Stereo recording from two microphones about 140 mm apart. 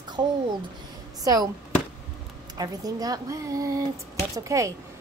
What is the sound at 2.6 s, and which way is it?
A woman's voice, 25° right (ahead or behind).